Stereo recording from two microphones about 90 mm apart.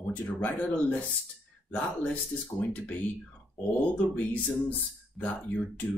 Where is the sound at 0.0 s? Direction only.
15° left (ahead or behind).